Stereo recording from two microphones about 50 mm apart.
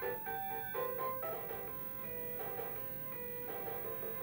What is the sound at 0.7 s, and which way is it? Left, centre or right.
Music, centre.